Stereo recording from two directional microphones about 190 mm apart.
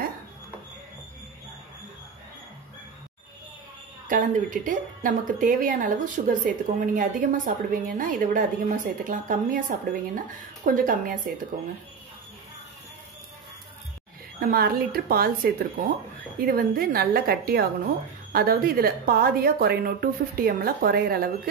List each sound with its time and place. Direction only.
4.1 s a woman's voice: 45° right (ahead or behind)
14.4 s a woman's voice: 50° right (ahead or behind)